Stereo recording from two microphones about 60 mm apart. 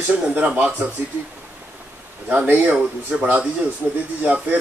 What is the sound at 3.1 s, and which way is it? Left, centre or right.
Speech, centre.